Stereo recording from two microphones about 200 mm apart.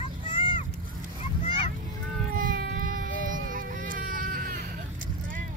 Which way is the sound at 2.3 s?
45° right (ahead or behind).